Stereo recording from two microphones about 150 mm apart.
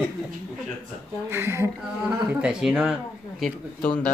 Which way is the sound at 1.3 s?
15° right (ahead or behind).